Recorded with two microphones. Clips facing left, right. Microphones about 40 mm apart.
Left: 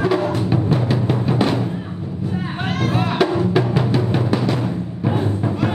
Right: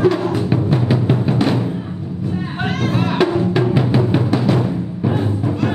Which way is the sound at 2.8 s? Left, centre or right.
Centre.